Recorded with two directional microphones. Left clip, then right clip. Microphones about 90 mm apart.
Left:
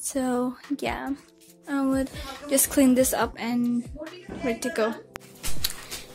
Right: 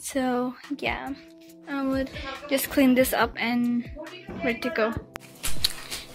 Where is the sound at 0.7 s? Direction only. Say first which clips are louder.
Right 1 dB; 60° left (ahead or behind).